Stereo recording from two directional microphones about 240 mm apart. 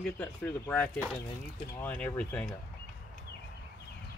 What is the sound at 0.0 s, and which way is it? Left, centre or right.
Speech, centre.